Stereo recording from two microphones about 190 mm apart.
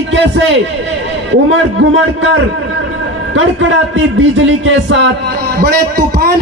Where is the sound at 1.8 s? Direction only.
65° right (ahead or behind).